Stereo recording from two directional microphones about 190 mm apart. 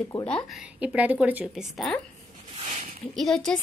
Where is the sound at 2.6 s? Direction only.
30° right (ahead or behind).